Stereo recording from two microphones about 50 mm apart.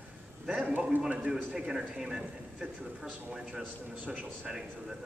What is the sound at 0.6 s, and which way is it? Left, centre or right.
A man's voice, right.